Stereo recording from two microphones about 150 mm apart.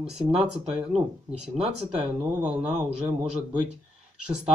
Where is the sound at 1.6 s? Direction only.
45° right (ahead or behind).